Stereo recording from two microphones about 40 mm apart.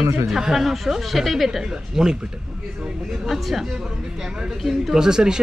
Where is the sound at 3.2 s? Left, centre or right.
Centre.